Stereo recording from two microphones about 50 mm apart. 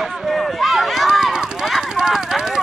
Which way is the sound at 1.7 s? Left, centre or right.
Centre.